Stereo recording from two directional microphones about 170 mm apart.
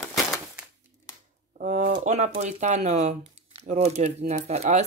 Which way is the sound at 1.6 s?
55° right (ahead or behind).